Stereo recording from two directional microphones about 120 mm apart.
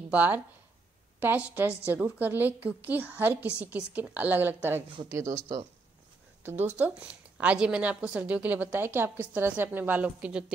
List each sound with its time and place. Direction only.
0.1 s a woman's voice: 15° right (ahead or behind)
6.8 s a woman's voice: 10° right (ahead or behind)